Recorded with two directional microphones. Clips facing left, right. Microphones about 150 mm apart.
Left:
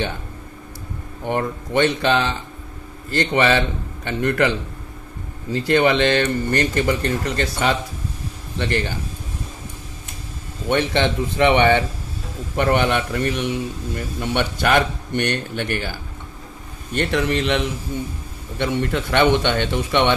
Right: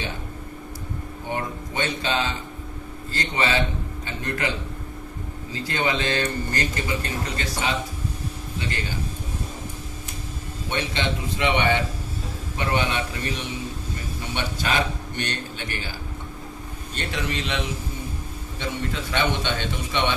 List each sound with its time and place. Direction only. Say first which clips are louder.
1.3 s speech: left 8 dB; 70° left (ahead or behind)
5.5 s speech: left 9 dB; 70° left (ahead or behind)
8.5 s speech: left 9 dB; 70° left (ahead or behind)
10.7 s speech: left 8 dB; 60° left (ahead or behind)
16.9 s speech: left 9 dB; 55° left (ahead or behind)
18.6 s speech: left 8 dB; 60° left (ahead or behind)